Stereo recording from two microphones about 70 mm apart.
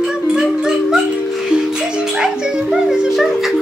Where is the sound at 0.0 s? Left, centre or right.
Centre.